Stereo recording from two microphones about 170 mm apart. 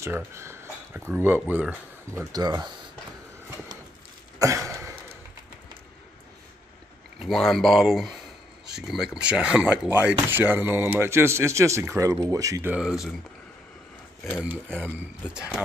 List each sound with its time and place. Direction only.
0.0 s speech: 15° right (ahead or behind)
2.3 s speech: 25° right (ahead or behind)
4.4 s a sound: 20° right (ahead or behind)
7.2 s speech: centre (ahead or behind); by 12.7 s 20° right (ahead or behind)
12.7 s speech: 5° right (ahead or behind)
14.4 s speech: 10° right (ahead or behind)